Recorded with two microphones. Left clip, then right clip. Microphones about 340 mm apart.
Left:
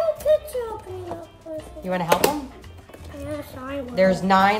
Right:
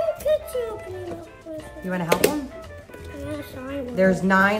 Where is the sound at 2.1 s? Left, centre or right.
Centre.